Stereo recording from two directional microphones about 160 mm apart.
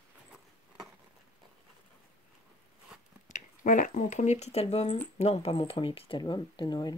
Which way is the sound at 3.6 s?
55° left (ahead or behind).